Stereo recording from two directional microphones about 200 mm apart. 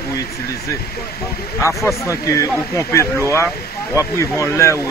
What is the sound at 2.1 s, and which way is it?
Speech, 15° left (ahead or behind).